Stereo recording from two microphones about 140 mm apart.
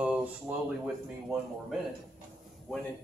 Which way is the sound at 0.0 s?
10° right (ahead or behind).